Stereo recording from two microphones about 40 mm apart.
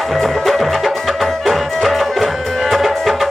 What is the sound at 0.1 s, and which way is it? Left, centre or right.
Music, centre.